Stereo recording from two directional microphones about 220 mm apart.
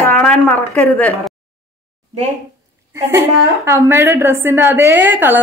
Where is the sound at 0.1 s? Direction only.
5° left (ahead or behind).